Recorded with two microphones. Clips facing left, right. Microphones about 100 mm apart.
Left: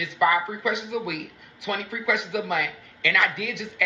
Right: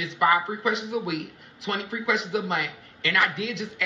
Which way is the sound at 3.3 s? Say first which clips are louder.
Right 1 dB; 60° left (ahead or behind).